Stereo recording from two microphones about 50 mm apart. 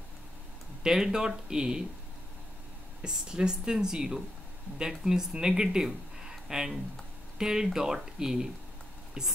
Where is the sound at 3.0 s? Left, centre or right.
Centre.